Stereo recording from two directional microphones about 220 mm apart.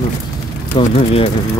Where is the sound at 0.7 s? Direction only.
25° left (ahead or behind).